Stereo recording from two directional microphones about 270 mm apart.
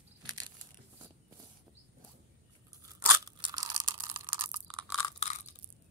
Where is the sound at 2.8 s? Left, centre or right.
Centre.